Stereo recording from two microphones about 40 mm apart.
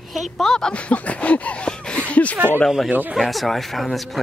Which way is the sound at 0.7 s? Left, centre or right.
Left.